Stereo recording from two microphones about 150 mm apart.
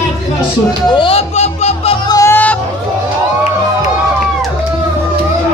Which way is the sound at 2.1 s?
15° left (ahead or behind).